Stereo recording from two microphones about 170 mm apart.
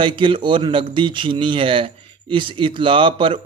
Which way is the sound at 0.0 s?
30° right (ahead or behind).